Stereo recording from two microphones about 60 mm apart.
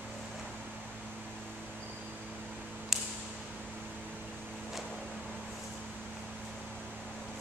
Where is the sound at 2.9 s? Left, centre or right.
Centre.